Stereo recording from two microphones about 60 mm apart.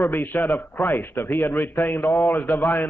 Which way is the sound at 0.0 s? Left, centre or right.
Left.